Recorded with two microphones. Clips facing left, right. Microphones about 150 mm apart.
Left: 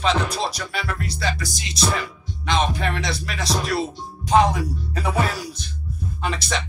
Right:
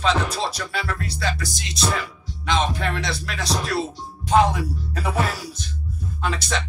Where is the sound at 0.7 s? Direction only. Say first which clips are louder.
Even; centre (ahead or behind).